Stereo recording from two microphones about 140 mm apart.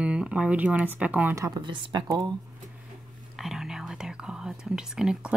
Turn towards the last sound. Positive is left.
turn(degrees=-5)  # may be behind; listen again after turning